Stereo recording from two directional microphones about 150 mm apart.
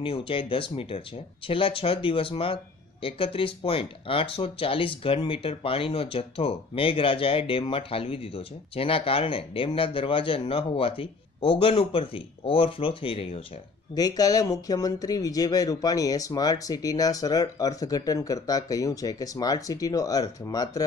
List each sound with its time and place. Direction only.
0.0 s speech: 35° left (ahead or behind)
13.9 s speech: 25° left (ahead or behind)